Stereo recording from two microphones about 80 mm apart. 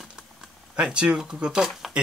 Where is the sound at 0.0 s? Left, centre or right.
Centre.